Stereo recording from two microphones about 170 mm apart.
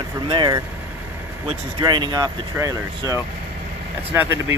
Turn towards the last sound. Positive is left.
turn(degrees=-15)  # may be behind; listen again after turning